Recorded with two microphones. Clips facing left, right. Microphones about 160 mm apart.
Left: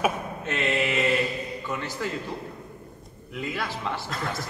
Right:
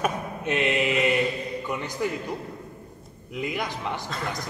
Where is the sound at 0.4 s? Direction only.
15° right (ahead or behind).